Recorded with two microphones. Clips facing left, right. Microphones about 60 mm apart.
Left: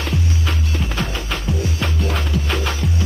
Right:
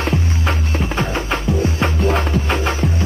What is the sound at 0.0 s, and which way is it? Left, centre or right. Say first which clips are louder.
Music: right 3 dB; right.